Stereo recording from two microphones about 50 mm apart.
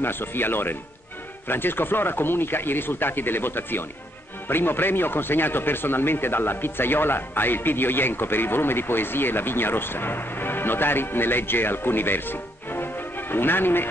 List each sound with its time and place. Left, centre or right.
0.0 s a man's voice: left